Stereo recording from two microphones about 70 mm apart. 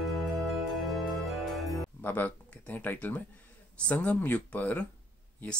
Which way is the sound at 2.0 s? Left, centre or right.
Left.